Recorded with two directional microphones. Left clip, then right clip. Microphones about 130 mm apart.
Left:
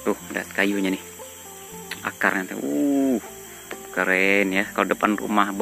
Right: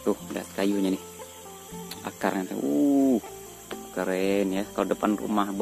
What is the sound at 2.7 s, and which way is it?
Bird, 15° left (ahead or behind).